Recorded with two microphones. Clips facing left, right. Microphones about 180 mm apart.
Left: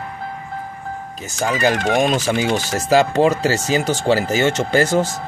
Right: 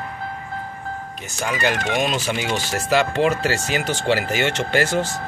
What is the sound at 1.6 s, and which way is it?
Speech, 40° left (ahead or behind).